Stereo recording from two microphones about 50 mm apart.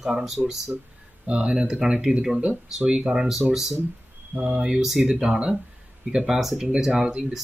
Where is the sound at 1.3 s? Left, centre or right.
Centre.